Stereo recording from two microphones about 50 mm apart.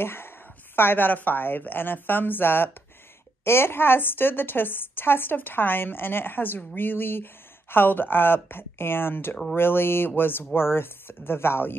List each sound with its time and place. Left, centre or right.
0.0 s a woman's voice: left